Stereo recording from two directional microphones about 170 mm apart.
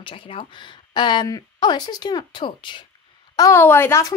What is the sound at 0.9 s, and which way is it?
A woman's voice, 25° left (ahead or behind).